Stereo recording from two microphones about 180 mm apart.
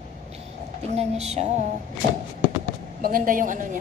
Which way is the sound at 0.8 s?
35° right (ahead or behind).